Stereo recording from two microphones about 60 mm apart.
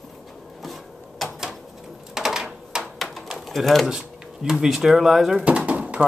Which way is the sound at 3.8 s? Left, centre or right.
Centre.